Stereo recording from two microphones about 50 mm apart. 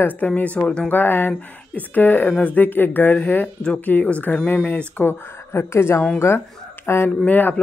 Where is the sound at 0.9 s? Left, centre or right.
Left.